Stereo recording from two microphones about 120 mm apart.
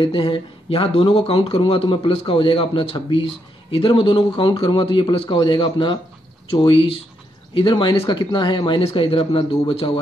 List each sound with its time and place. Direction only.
0.0 s speech: 50° left (ahead or behind)